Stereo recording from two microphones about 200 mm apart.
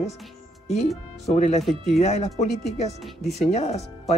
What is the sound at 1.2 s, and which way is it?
Speech, 35° left (ahead or behind).